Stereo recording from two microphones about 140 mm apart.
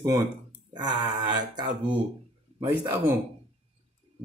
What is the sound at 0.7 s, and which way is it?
Mantra, 30° right (ahead or behind).